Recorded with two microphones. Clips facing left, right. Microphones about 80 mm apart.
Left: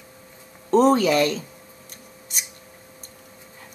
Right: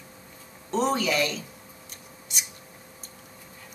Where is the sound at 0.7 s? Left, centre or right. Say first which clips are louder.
Left 8 dB; left.